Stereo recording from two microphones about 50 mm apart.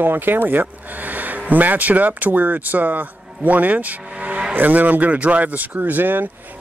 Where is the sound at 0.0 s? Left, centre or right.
Right.